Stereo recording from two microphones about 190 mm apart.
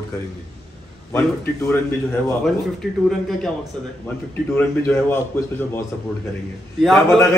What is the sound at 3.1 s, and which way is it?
Speech, centre (ahead or behind).